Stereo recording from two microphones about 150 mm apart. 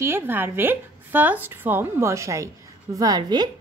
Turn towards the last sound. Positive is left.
turn(degrees=-30)  # may be behind; listen again after turning